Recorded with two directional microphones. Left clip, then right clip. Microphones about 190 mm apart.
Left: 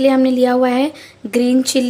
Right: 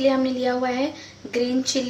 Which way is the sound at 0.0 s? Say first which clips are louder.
Left 8 dB; 55° left (ahead or behind).